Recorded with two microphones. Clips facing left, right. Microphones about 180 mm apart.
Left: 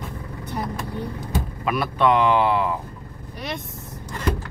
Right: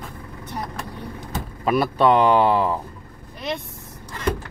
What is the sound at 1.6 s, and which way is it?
Speech, 40° right (ahead or behind).